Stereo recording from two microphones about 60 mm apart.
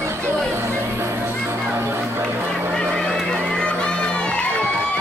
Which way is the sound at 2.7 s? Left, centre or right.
Centre.